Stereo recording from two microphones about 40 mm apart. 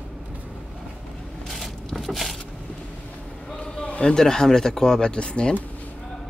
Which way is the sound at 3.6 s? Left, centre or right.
Left.